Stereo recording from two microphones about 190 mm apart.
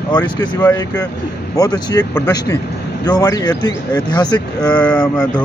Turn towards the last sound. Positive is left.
turn(degrees=5)  # may be behind; listen again after turning